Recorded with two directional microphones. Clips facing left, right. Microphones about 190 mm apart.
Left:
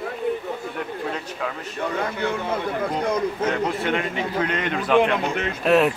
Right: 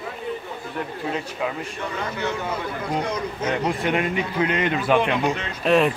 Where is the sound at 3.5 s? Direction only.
10° right (ahead or behind).